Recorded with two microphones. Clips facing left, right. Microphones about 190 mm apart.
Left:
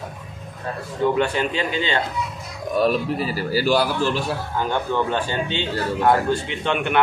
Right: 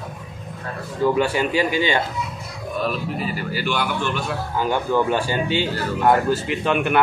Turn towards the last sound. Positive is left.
turn(degrees=0)  # may be behind; listen again after turning